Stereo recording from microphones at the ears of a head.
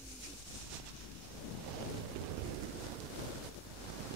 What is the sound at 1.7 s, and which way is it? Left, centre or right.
Thunder, right.